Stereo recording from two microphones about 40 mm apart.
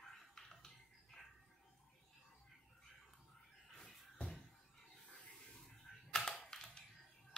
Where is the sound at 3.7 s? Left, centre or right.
Centre.